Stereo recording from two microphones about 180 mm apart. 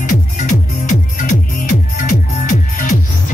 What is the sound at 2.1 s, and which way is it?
Music, 45° left (ahead or behind).